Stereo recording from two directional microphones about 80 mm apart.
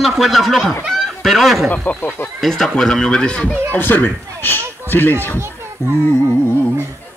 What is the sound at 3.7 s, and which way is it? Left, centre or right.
Speech, left.